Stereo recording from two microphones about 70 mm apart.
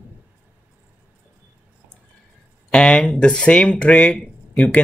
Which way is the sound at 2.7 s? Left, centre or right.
Centre.